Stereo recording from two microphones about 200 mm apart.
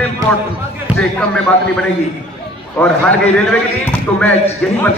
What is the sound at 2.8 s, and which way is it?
A man's voice, 5° left (ahead or behind).